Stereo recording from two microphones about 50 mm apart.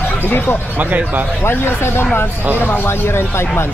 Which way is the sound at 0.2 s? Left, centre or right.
Left.